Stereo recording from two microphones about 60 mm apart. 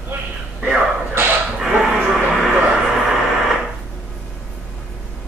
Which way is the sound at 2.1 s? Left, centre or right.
Centre.